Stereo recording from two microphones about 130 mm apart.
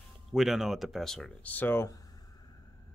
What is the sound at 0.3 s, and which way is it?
Speech, centre (ahead or behind).